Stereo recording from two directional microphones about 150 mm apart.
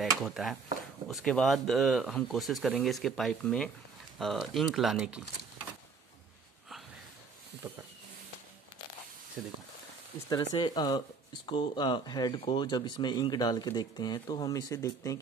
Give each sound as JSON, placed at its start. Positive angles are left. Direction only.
{"t": 0.2, "sound": "speech", "side_deg": 0}
{"t": 7.6, "sound": "a sound", "side_deg": -10}
{"t": 9.4, "sound": "speech", "side_deg": 0}
{"t": 10.3, "sound": "speech", "side_deg": 30}